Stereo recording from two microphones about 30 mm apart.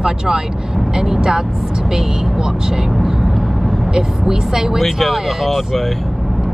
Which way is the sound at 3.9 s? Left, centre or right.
Centre.